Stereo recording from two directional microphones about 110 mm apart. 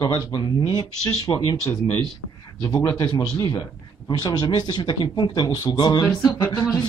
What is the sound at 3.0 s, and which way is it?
Speech, 35° left (ahead or behind).